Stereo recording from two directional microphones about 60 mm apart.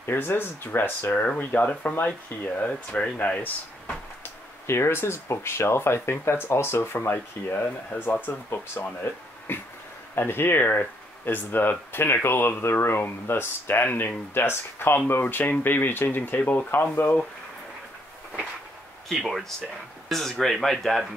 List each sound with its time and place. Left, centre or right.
0.0 s speech: left
2.9 s speech: centre
4.6 s speech: left
19.0 s speech: centre